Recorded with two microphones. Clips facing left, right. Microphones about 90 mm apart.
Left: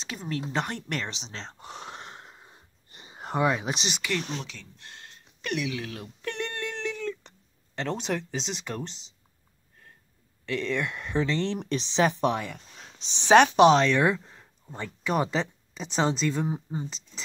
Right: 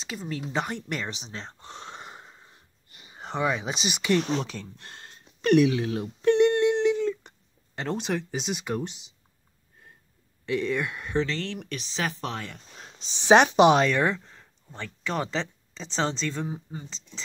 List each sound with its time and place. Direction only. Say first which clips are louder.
0.0 s speech: left 1 dB; centre (ahead or behind)
1.6 s a sound: left 1 dB; 5° left (ahead or behind)
2.3 s wheeze: left 1 dB; 15° left (ahead or behind)
2.9 s a sound: left 3 dB; 35° left (ahead or behind)
3.2 s speech: left 2 dB; 5° left (ahead or behind)
4.3 s speech: right 7 dB; 40° right (ahead or behind)
5.8 s speech: right 8 dB; 25° right (ahead or behind)
6.0 s a sound: right 14 dB; 20° right (ahead or behind)
10.4 s speech: right 2 dB; 15° right (ahead or behind)
11.1 s speech: left 1 dB; 20° left (ahead or behind)
12.4 s speech: left 2 dB; centre (ahead or behind)
13.9 s speech: left 1 dB; 5° left (ahead or behind)